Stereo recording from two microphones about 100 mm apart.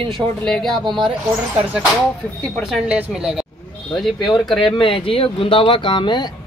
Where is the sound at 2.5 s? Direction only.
Centre (ahead or behind).